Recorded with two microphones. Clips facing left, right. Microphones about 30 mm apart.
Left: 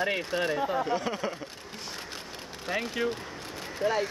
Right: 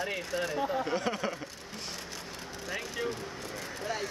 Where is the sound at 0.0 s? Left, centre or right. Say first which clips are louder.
Left 5 dB; left.